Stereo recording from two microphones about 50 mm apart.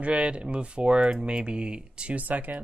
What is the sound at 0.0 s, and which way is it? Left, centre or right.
Speech, right.